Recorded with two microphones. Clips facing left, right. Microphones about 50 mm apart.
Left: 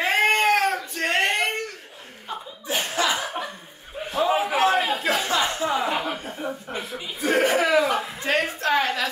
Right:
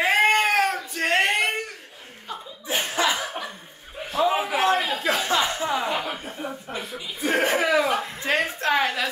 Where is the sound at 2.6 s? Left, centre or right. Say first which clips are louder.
Right 1 dB; centre.